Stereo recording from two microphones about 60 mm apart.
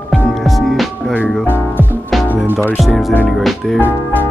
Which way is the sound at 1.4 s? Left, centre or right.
Left.